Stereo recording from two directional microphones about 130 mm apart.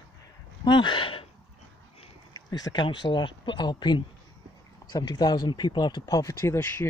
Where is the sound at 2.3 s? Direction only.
30° left (ahead or behind).